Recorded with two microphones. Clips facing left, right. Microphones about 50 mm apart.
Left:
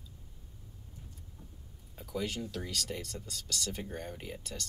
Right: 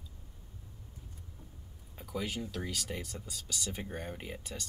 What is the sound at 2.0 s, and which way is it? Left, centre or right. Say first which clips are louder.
Speech: left 1 dB; centre.